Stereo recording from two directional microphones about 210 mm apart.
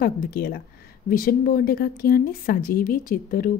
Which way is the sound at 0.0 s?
45° left (ahead or behind).